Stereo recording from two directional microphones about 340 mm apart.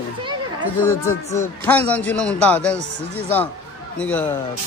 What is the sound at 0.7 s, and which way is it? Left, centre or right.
A man's voice, centre.